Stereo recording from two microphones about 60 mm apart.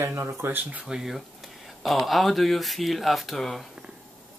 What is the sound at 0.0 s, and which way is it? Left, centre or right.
Speech, right.